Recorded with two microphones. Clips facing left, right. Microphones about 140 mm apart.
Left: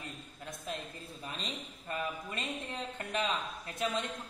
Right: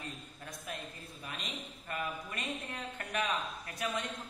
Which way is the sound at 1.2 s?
30° left (ahead or behind).